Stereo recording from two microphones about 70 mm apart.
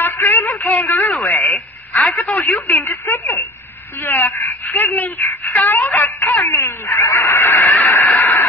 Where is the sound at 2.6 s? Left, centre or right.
Left.